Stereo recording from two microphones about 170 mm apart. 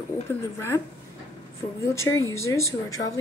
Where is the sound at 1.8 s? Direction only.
15° left (ahead or behind).